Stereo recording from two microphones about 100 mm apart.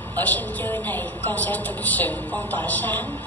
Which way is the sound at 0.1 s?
15° left (ahead or behind).